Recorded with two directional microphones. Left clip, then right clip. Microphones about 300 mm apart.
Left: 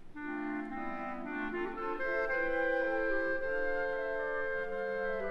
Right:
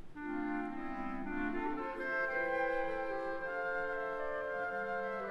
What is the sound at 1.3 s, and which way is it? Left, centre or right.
Clarinet, left.